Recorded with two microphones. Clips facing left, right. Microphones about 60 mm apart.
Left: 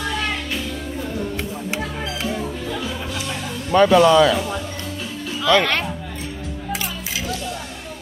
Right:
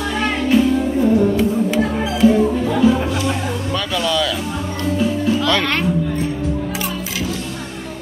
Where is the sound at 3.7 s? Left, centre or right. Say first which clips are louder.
Left 10 dB; left.